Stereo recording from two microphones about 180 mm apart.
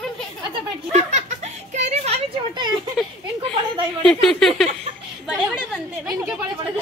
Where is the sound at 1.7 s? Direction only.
40° right (ahead or behind).